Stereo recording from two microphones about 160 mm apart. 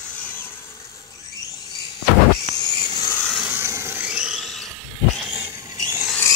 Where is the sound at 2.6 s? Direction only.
25° left (ahead or behind).